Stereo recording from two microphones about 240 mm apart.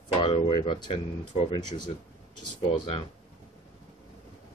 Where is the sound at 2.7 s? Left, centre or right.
Left.